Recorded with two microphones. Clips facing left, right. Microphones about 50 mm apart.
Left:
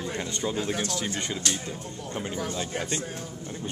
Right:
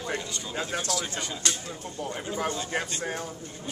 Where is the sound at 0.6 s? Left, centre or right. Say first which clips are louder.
Left 1 dB; left.